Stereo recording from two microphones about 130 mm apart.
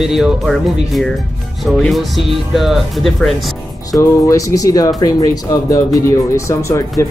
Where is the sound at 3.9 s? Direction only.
25° left (ahead or behind).